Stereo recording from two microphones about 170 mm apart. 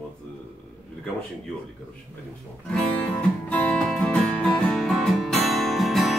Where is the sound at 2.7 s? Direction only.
5° left (ahead or behind).